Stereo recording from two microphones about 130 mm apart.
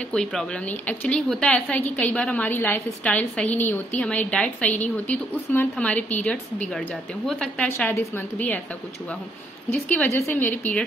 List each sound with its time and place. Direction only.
0.1 s a woman's voice: 5° left (ahead or behind)
7.7 s a woman's voice: 20° left (ahead or behind)
9.7 s a woman's voice: 10° left (ahead or behind)